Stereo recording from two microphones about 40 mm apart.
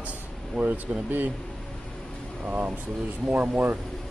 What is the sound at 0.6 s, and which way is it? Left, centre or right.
Speech, right.